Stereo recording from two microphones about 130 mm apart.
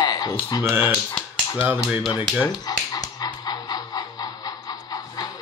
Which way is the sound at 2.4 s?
30° left (ahead or behind).